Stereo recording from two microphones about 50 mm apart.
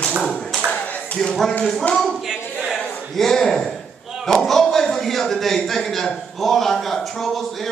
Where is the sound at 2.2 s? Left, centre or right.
Centre.